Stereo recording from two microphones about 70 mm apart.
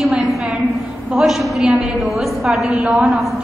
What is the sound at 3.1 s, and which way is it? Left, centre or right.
Speech, centre.